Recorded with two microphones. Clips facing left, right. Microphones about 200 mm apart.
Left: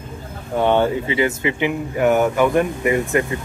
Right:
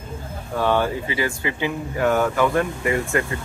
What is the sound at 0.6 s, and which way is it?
Speech, 20° left (ahead or behind).